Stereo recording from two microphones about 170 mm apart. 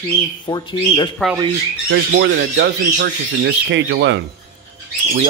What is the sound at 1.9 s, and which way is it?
Speech, 90° right.